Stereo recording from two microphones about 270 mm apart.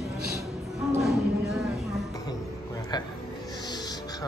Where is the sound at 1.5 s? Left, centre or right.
Centre.